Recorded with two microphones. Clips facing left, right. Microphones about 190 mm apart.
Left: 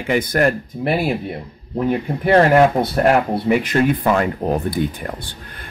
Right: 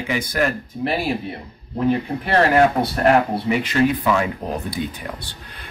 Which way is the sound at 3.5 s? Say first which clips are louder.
Left 3 dB; 55° left (ahead or behind).